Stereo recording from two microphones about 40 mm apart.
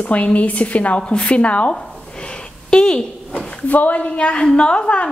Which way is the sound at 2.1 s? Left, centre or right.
Left.